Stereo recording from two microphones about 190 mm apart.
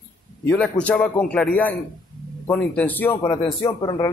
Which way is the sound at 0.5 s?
5° left (ahead or behind).